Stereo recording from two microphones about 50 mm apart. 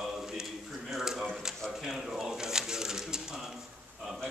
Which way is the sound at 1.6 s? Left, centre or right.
Centre.